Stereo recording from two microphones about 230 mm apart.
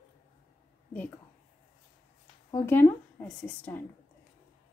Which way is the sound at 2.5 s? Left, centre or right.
Centre.